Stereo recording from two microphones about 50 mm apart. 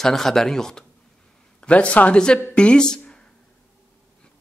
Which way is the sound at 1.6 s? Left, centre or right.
Left.